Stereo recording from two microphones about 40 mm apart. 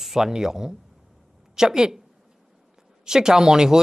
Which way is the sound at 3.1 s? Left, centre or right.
Centre.